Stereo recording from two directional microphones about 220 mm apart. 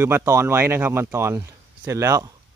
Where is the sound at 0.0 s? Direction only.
10° right (ahead or behind).